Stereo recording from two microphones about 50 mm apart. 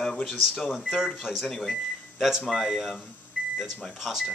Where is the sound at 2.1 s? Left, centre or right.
Centre.